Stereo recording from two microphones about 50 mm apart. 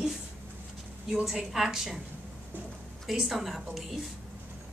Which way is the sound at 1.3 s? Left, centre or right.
Centre.